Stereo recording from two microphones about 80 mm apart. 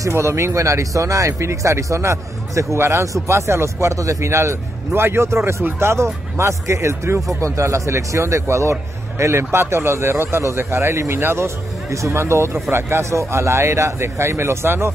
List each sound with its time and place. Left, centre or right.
0.0 s speech: right